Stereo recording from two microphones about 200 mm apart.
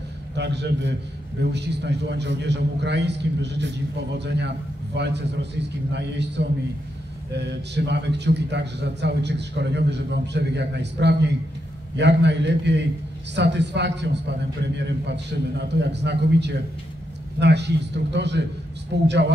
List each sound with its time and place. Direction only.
0.4 s a man's voice: 60° right (ahead or behind)